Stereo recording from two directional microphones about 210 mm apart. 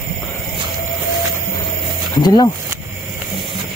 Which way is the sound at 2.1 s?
20° left (ahead or behind).